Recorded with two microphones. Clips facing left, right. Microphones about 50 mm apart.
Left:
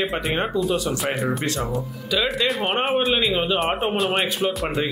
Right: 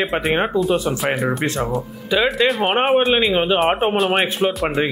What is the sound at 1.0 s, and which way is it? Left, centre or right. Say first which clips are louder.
Speech: right 4 dB; centre.